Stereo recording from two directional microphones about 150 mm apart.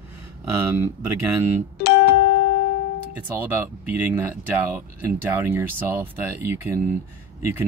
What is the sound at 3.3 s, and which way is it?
Speech, 10° right (ahead or behind).